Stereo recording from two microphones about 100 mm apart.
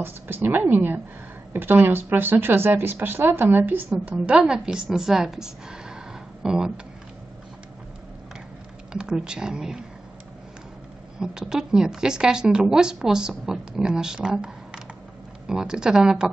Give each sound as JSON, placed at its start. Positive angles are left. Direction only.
{"t": 0.0, "sound": "speech", "side_deg": -20}
{"t": 8.9, "sound": "speech", "side_deg": -10}
{"t": 11.1, "sound": "speech", "side_deg": -5}